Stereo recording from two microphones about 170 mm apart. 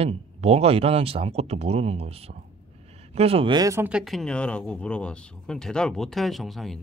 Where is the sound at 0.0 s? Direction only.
35° right (ahead or behind); by 3.9 s 20° right (ahead or behind).